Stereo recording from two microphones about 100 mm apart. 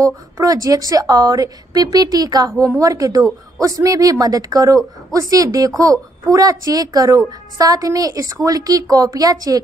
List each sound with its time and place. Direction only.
0.0 s a woman's voice: 35° right (ahead or behind)